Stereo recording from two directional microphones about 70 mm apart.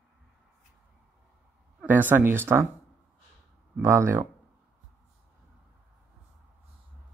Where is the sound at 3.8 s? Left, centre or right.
Right.